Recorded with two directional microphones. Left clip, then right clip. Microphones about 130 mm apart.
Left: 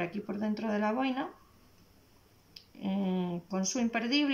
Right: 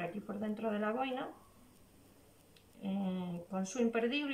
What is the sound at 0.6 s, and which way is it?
Speech, 35° left (ahead or behind).